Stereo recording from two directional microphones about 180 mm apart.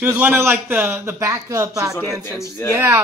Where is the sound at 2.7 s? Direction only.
15° right (ahead or behind).